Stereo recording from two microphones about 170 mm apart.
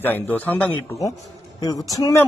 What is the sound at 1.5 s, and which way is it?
Speech, 20° left (ahead or behind).